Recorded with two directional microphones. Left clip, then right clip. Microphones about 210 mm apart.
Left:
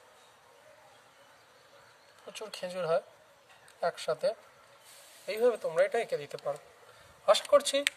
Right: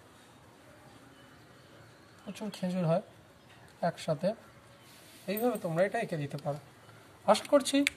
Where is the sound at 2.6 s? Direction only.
45° left (ahead or behind).